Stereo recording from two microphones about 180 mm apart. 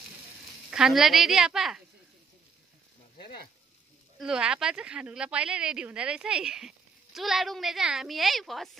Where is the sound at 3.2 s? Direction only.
60° left (ahead or behind).